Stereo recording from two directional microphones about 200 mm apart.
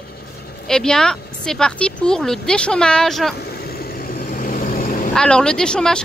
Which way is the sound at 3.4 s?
50° left (ahead or behind).